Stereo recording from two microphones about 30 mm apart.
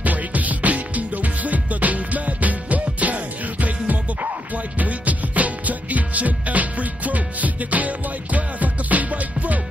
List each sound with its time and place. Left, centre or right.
0.0 s music: right